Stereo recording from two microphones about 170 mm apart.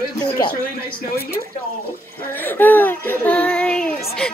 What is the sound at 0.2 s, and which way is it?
Speech, 25° left (ahead or behind).